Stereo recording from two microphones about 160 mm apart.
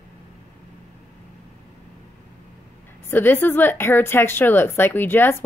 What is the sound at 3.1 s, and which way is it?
A woman's voice, 15° left (ahead or behind).